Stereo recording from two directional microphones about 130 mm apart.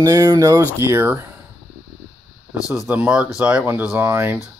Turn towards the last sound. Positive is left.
turn(degrees=-15)  # may be behind; listen again after turning